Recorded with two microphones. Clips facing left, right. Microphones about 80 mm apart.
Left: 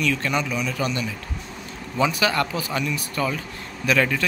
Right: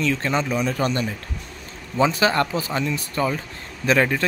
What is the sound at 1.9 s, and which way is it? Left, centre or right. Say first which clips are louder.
Speech: right 3 dB; right.